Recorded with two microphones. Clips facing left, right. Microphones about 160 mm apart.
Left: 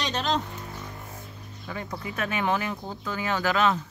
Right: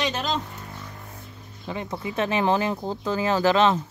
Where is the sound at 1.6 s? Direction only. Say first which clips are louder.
Right 4 dB; 20° right (ahead or behind).